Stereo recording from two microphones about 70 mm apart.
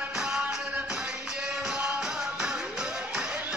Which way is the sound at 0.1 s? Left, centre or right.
Centre.